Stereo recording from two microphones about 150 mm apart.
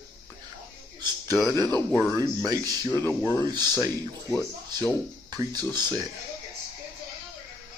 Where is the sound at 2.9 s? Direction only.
15° left (ahead or behind).